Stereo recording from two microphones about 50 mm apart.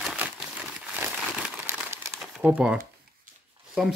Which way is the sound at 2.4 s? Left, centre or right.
Right.